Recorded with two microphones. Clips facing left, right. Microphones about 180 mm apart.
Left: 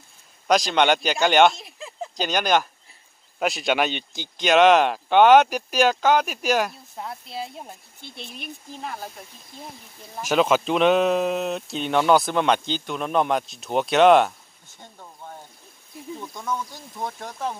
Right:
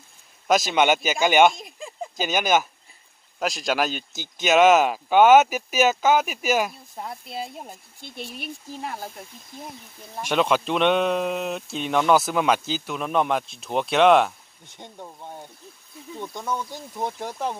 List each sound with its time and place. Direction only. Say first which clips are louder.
0.5 s speech: even; 5° right (ahead or behind)
10.2 s speech: left 2 dB; 5° left (ahead or behind)
14.8 s speech: right 4 dB; 20° right (ahead or behind)
17.2 s speech: right 2 dB; 10° right (ahead or behind)